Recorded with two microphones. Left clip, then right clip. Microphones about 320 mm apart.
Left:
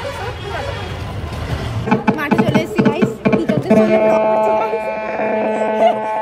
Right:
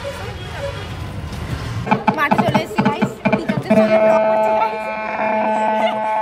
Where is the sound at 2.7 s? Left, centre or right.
Centre.